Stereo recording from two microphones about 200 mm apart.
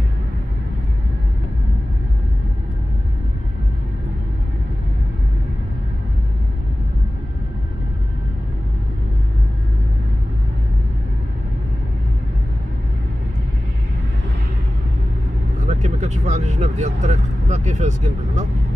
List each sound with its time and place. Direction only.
15.6 s vehicle: 35° right (ahead or behind)